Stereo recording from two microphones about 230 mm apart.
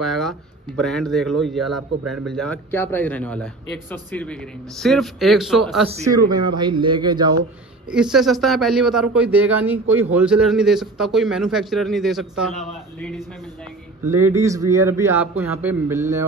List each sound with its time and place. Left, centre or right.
0.0 s a man's voice: centre
6.0 s speech: centre
7.9 s a man's voice: centre
14.3 s a man's voice: centre